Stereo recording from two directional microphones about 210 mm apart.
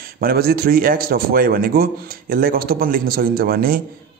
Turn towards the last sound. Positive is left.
turn(degrees=-45)  # may be behind; listen again after turning